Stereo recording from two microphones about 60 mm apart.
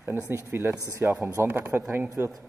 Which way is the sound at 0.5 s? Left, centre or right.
Right.